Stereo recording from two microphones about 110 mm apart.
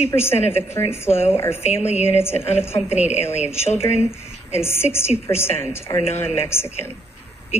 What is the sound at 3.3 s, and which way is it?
Speech, 85° left.